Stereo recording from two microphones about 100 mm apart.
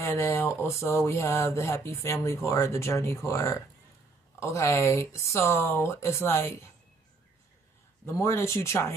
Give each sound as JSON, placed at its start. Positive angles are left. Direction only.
{"t": 0.0, "sound": "speech", "side_deg": 25}
{"t": 8.0, "sound": "speech", "side_deg": 25}